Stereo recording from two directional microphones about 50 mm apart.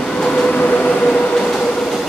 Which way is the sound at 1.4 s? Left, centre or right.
Centre.